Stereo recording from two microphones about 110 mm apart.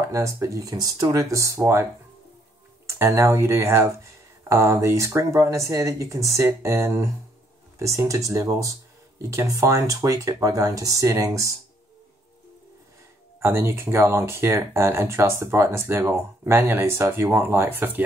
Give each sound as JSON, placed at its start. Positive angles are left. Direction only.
{"t": 0.1, "sound": "speech", "side_deg": -30}
{"t": 2.9, "sound": "speech", "side_deg": -25}
{"t": 13.4, "sound": "speech", "side_deg": -25}